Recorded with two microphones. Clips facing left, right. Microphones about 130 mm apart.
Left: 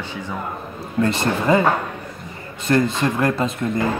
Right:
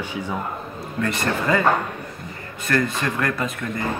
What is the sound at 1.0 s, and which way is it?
Speech, 25° left (ahead or behind).